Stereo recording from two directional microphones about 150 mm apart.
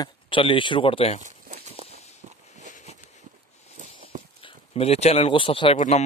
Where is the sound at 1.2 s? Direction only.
55° right (ahead or behind).